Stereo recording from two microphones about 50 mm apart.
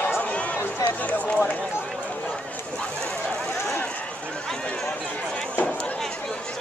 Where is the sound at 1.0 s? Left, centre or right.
Left.